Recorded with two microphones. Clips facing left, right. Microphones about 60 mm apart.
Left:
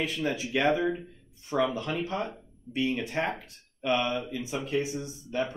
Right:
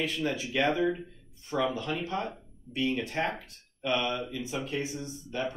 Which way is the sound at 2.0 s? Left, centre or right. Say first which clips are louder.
Left 1 dB; centre.